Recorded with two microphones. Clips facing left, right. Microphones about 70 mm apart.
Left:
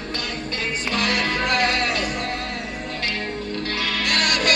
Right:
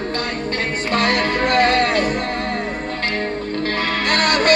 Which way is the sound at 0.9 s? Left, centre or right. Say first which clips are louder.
Right 5 dB; right.